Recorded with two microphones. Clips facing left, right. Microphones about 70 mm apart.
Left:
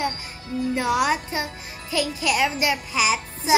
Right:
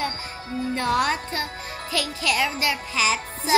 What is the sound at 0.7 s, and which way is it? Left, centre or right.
A child's voice, centre.